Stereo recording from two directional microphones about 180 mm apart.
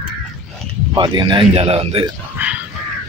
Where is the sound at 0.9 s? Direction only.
25° right (ahead or behind).